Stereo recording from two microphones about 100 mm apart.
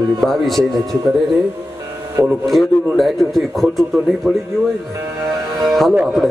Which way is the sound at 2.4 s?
Centre (ahead or behind).